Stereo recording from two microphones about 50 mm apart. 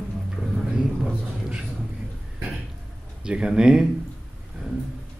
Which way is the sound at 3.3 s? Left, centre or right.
Centre.